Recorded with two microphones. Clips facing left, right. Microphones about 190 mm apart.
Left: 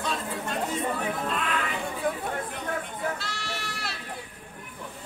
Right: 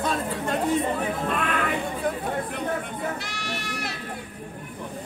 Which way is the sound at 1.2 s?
55° right (ahead or behind).